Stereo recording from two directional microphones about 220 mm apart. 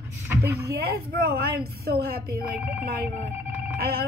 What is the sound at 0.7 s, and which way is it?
A woman's voice, 45° right (ahead or behind).